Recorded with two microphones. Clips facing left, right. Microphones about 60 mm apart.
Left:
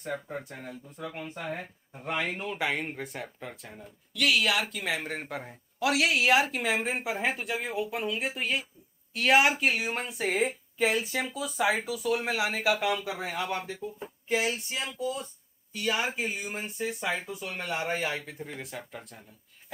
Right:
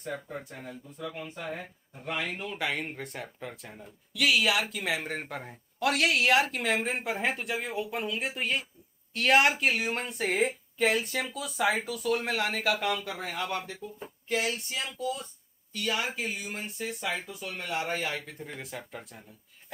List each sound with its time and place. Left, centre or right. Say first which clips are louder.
0.1 s speech: left 2 dB; left
2.2 s speech: left 2 dB; centre
16.7 s speech: left 2 dB; centre